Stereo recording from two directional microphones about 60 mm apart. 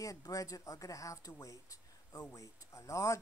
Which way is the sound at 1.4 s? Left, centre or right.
Left.